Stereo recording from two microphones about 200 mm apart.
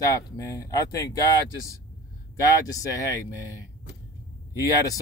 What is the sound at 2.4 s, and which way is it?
Speech, 15° left (ahead or behind).